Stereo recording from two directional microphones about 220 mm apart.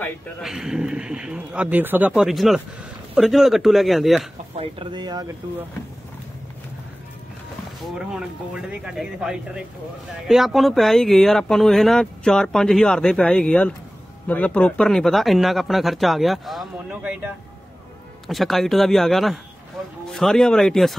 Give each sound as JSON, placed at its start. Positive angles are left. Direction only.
{"t": 0.0, "sound": "speech", "side_deg": 0}
{"t": 4.6, "sound": "speech", "side_deg": -20}
{"t": 7.8, "sound": "speech", "side_deg": -5}